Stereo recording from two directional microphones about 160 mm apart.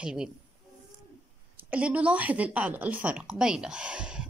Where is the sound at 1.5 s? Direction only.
10° right (ahead or behind).